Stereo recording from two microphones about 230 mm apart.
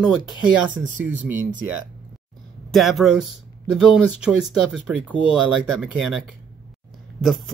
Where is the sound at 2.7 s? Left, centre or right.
Centre.